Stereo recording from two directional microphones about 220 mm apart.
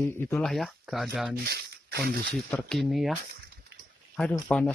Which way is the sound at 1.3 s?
45° right (ahead or behind).